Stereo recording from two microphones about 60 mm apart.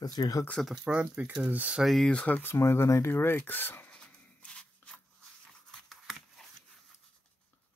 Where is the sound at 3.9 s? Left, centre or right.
Centre.